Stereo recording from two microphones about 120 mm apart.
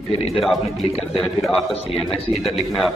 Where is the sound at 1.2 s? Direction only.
Centre (ahead or behind).